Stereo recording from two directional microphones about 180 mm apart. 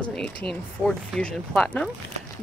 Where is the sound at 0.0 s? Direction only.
5° left (ahead or behind).